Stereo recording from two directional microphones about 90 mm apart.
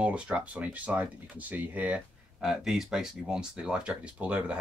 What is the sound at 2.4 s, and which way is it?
Speech, 5° right (ahead or behind).